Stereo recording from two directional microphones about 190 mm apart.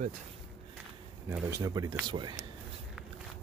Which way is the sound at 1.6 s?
20° right (ahead or behind).